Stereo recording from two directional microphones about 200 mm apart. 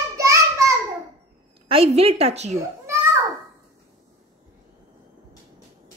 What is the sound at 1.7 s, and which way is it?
Speech, 30° right (ahead or behind).